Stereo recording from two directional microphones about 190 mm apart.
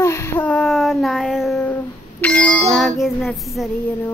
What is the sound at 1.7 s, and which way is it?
Music, 10° left (ahead or behind).